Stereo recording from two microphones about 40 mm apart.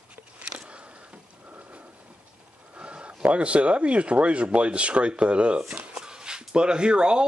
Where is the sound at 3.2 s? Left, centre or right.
Right.